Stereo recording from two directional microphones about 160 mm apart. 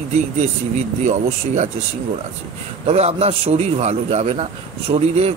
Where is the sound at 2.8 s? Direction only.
40° right (ahead or behind).